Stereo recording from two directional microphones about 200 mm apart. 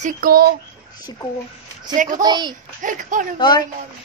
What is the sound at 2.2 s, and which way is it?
Speech, 20° right (ahead or behind).